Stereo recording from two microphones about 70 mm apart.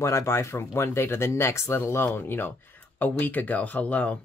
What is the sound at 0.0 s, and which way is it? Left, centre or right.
Speech, left.